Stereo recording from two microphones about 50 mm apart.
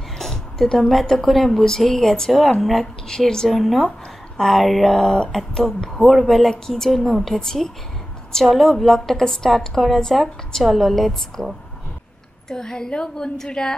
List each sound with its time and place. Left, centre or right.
0.2 s a woman's voice: centre
3.4 s a woman's voice: centre
4.9 s a woman's voice: centre
12.4 s speech: centre